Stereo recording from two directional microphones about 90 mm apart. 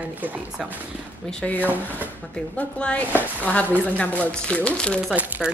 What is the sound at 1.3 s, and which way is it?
Speech, 15° left (ahead or behind).